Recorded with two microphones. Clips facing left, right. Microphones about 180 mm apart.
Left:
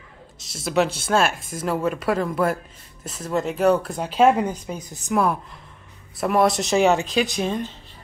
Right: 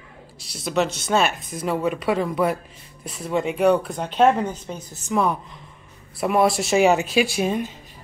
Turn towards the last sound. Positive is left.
turn(degrees=-10)  # may be behind; listen again after turning